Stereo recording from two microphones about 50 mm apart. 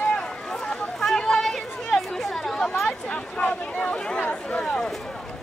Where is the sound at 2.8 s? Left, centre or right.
Left.